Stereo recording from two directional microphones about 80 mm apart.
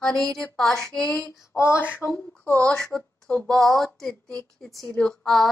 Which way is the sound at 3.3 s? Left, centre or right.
Centre.